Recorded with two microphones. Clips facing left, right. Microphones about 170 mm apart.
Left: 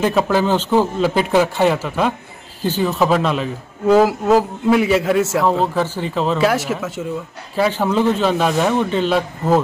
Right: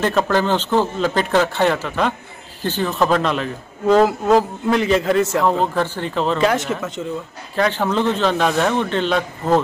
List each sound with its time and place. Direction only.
0.0 s a man's voice: 10° left (ahead or behind)